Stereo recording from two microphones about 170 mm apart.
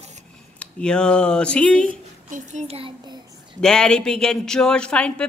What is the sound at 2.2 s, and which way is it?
Speech, 50° right (ahead or behind).